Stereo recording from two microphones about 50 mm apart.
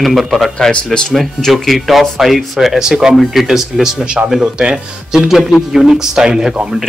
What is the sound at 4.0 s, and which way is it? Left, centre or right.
Speech, right.